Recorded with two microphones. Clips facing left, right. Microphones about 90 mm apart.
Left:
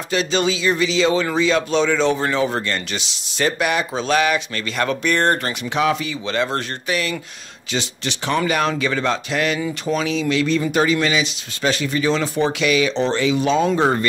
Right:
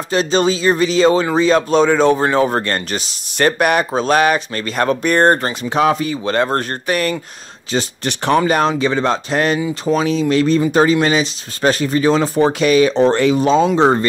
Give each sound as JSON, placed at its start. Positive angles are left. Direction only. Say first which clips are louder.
{"t": 0.1, "sound": "speech", "louder": "right 4 dB", "side_deg": -40}
{"t": 8.5, "sound": "speech", "louder": "right 5 dB", "side_deg": -35}